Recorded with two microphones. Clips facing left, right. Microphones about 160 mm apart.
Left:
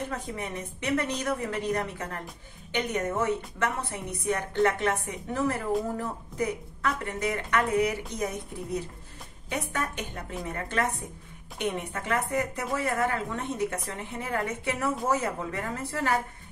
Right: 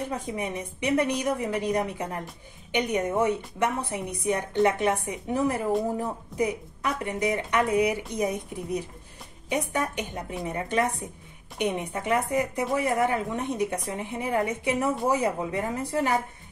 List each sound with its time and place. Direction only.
0.1 s a woman's voice: 15° right (ahead or behind)